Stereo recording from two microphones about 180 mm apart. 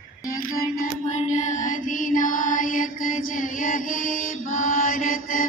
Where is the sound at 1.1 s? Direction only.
40° left (ahead or behind).